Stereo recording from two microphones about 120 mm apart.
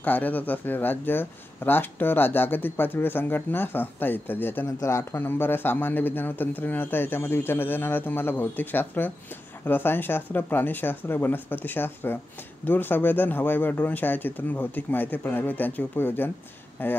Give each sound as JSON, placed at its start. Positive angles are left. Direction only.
{"t": 0.0, "sound": "speech", "side_deg": 15}